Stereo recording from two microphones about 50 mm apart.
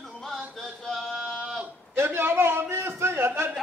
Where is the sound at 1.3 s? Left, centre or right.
Centre.